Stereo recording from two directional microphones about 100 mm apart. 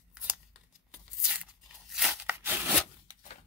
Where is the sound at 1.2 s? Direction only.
10° right (ahead or behind).